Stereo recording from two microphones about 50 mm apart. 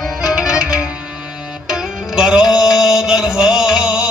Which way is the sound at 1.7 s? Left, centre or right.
Centre.